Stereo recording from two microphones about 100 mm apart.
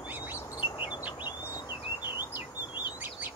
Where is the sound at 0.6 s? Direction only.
50° left (ahead or behind).